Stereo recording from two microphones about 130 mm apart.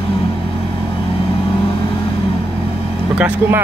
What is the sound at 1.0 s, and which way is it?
Vehicle, 45° left (ahead or behind).